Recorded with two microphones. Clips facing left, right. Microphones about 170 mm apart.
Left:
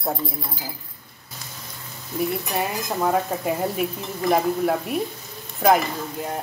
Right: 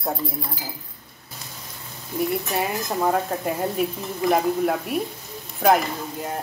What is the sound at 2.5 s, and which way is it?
A woman's voice, centre (ahead or behind).